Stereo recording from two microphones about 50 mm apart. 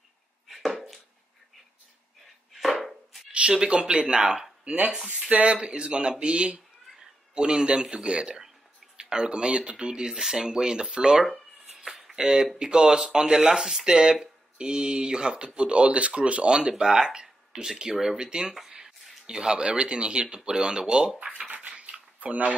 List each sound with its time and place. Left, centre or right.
0.5 s chopping: centre
2.5 s chopping: centre
3.3 s speech: centre
5.3 s speech: right
11.2 s a sound: centre
12.2 s speech: centre; by 22.5 s right